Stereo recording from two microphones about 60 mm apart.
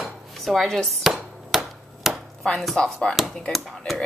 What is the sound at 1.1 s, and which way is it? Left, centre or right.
Hammer, centre.